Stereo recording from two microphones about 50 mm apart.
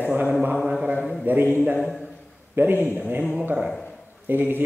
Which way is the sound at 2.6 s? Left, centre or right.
Right.